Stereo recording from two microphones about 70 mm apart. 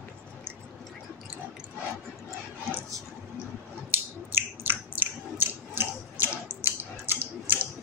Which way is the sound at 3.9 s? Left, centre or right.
Right.